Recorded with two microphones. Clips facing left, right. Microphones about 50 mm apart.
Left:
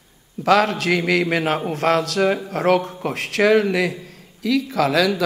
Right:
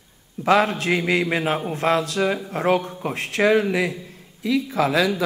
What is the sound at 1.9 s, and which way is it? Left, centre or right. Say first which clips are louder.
Speech: left 2 dB; left.